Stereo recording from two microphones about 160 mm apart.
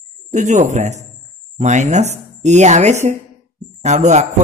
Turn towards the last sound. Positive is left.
turn(degrees=-45)  # may be behind; listen again after turning